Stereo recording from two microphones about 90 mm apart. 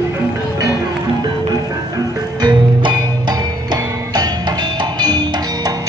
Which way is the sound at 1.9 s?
50° right (ahead or behind).